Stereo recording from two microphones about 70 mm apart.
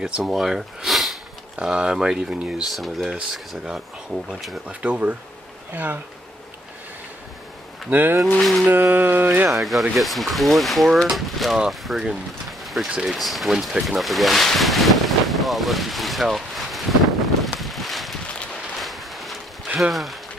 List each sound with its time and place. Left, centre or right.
0.2 s speech: centre
4.8 s mantra: right
7.9 s mantra: right
8.4 s speech: centre
8.6 s mantra: right
9.6 s speech: centre
17.6 s a sound: centre
19.8 s speech: centre